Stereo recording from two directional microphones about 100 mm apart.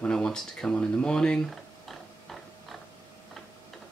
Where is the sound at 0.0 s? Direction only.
10° left (ahead or behind).